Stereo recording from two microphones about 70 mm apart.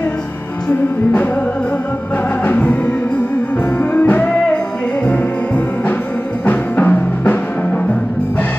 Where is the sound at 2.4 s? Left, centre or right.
Left.